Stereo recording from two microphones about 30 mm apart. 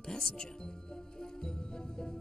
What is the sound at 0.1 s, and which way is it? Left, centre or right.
Speech, left.